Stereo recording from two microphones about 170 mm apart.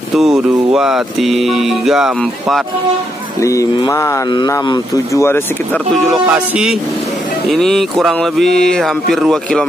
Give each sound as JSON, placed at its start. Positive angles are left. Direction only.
{"t": 0.1, "sound": "speech", "side_deg": 0}
{"t": 3.3, "sound": "mantra", "side_deg": 20}
{"t": 4.3, "sound": "speech", "side_deg": 20}
{"t": 6.0, "sound": "speech", "side_deg": -5}